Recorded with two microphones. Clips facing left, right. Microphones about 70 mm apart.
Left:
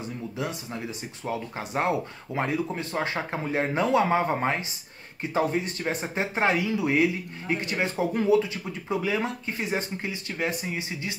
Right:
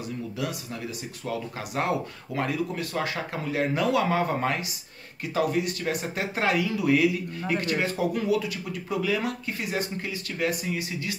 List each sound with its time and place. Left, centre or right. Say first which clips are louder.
1.2 s speech: left 1 dB; left